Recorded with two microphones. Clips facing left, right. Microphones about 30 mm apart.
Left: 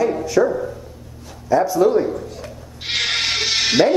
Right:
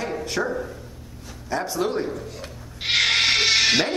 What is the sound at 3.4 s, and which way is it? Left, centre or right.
Music, right.